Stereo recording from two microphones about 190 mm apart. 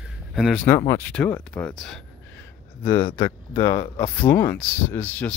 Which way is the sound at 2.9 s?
25° left (ahead or behind).